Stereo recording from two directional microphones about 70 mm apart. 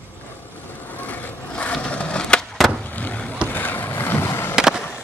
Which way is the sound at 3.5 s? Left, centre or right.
Left.